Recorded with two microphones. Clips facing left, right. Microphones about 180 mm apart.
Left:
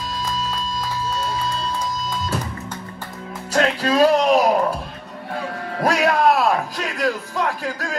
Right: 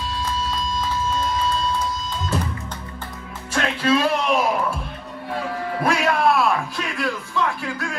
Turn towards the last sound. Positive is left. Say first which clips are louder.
# left 2 dB
turn(degrees=40)  # may be behind; listen again after turning